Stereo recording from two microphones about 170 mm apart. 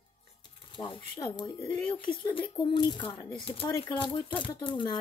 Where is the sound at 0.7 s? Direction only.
30° left (ahead or behind).